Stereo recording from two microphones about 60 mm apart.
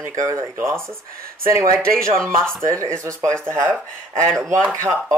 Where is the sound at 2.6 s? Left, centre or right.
Right.